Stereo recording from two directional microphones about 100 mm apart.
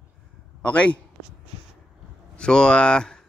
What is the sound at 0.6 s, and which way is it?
Speech, 10° left (ahead or behind).